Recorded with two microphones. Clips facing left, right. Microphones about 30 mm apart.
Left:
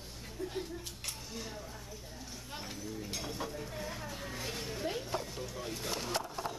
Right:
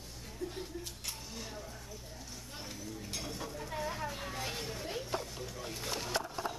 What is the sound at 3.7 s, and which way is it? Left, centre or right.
Speech, centre.